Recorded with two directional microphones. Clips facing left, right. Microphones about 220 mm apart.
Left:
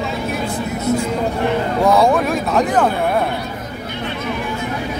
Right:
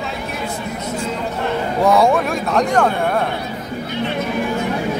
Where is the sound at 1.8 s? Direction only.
Centre (ahead or behind).